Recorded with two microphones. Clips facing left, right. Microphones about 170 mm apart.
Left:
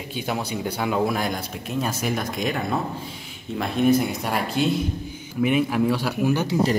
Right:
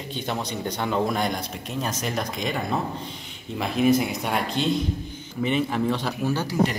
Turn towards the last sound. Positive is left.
turn(degrees=10)  # may be behind; listen again after turning